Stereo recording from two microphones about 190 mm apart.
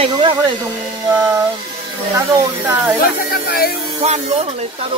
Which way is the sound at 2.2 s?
15° right (ahead or behind).